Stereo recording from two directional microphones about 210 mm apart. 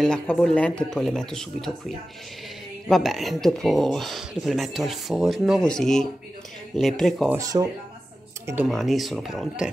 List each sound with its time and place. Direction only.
0.0 s speech: 5° left (ahead or behind)
7.3 s speech: 15° right (ahead or behind)
8.6 s speech: centre (ahead or behind)